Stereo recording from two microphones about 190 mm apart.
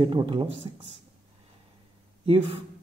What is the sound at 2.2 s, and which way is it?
Speech, 30° right (ahead or behind).